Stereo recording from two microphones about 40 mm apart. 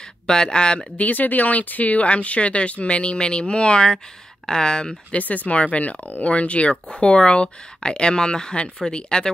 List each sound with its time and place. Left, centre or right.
0.3 s speech: centre
0.9 s speech: left; by 4.9 s centre
5.1 s speech: left; by 9.3 s centre